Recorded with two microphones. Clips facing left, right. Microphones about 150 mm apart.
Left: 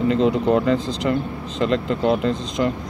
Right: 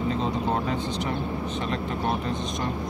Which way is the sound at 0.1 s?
90° left.